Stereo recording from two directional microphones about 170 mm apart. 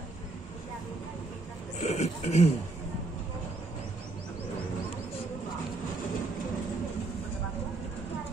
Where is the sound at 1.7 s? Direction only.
40° left (ahead or behind).